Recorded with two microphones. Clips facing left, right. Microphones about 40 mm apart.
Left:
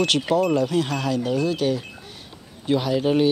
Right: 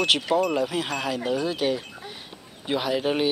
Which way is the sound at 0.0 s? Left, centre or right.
Centre.